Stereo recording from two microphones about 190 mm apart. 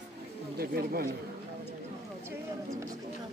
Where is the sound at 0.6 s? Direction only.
50° right (ahead or behind).